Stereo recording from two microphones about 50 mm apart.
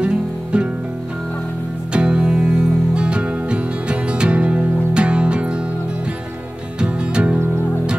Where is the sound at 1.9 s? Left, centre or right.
Centre.